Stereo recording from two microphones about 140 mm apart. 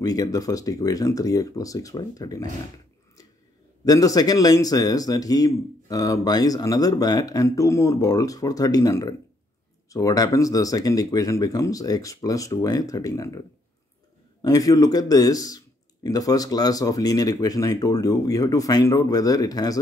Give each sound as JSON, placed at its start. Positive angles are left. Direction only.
{"t": 0.0, "sound": "speech", "side_deg": 25}
{"t": 3.8, "sound": "speech", "side_deg": 25}
{"t": 14.4, "sound": "speech", "side_deg": 25}